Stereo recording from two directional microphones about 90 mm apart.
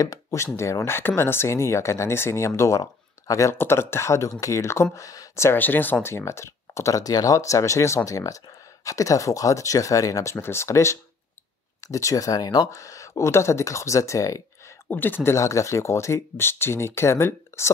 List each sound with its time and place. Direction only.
0.0 s speech: 40° left (ahead or behind)
5.6 s speech: 20° left (ahead or behind); by 10.3 s 40° left (ahead or behind)
10.3 s speech: 30° left (ahead or behind)
14.9 s speech: 20° left (ahead or behind)